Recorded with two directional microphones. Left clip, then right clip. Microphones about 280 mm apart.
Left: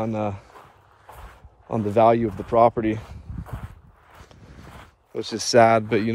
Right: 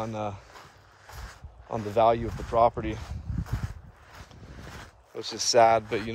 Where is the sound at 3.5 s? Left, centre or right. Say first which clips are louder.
Even; centre.